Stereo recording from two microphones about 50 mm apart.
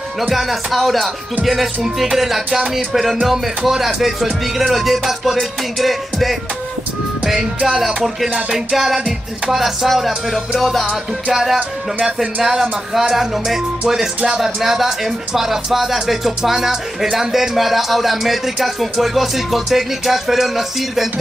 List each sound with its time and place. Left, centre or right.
0.3 s speech: centre
7.2 s music: centre
7.8 s speech: centre
8.3 s music: right
8.5 s music: centre
9.5 s speech: centre
12.2 s music: centre
14.4 s speech: centre